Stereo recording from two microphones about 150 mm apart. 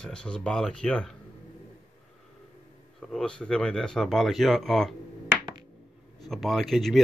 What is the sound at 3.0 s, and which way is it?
Speech, 5° left (ahead or behind).